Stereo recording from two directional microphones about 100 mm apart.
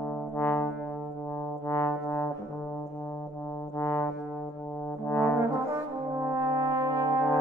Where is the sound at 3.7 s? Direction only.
30° left (ahead or behind).